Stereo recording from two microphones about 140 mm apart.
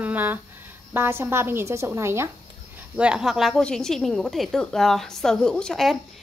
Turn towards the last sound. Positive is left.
turn(degrees=0)  # may be behind; listen again after turning